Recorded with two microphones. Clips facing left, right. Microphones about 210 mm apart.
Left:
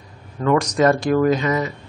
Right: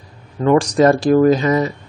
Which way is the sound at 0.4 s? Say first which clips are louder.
Right 4 dB; 30° right (ahead or behind).